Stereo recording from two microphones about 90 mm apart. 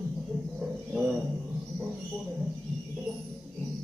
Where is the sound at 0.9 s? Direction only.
5° right (ahead or behind).